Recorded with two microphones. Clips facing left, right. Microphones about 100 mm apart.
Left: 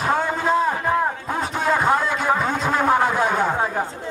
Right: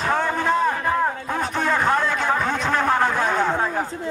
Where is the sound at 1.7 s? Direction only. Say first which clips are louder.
Left 2 dB; 15° left (ahead or behind).